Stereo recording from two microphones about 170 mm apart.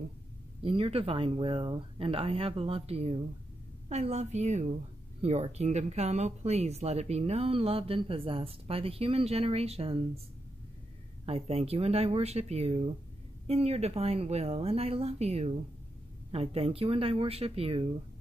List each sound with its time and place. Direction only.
0.6 s speech: 30° right (ahead or behind)
11.2 s speech: 35° right (ahead or behind)